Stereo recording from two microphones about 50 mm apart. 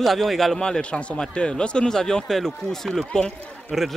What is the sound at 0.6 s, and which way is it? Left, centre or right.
Speech, centre.